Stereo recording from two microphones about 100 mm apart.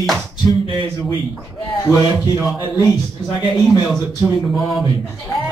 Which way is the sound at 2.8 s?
40° left (ahead or behind).